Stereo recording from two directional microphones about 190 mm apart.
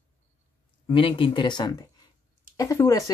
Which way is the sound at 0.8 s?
25° left (ahead or behind).